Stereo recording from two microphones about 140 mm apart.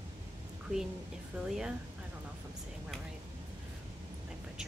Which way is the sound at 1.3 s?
5° right (ahead or behind).